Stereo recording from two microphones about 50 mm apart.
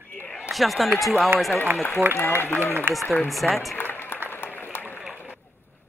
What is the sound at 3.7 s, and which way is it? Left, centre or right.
Applause, left.